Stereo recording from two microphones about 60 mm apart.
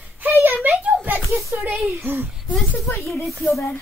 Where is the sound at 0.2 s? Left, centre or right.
Right.